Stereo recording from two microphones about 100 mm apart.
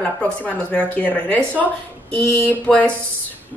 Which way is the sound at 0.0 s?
15° left (ahead or behind).